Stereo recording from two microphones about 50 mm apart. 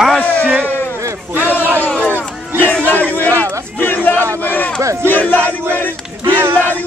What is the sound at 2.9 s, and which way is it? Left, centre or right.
Crowd, left.